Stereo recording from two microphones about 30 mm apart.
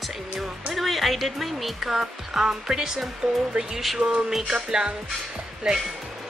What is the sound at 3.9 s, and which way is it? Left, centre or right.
Speech, right.